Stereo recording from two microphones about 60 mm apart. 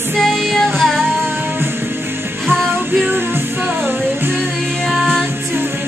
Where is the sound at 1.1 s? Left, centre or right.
Right.